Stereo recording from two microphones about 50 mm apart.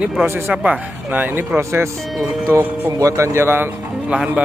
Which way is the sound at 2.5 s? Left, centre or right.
Right.